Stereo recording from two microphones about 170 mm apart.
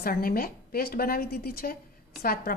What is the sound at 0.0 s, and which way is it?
A woman's voice, 60° left (ahead or behind).